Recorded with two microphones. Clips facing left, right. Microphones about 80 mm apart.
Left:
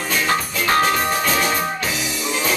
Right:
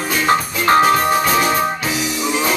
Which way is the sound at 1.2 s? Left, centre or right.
Centre.